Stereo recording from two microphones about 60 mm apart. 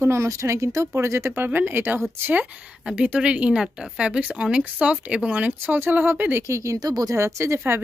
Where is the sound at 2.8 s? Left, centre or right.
Centre.